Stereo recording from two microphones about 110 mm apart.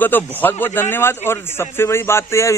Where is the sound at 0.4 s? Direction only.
20° left (ahead or behind).